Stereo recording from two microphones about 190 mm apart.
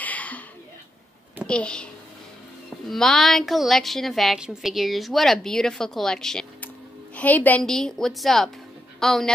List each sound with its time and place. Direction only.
0.0 s a sound: 10° left (ahead or behind)
1.5 s a woman's voice: 5° left (ahead or behind)
2.9 s a woman's voice: centre (ahead or behind)